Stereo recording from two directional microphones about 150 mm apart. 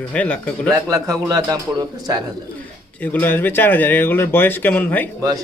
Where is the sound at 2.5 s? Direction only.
10° left (ahead or behind).